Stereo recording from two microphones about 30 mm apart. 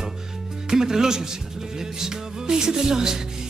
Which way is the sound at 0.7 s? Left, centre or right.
Centre.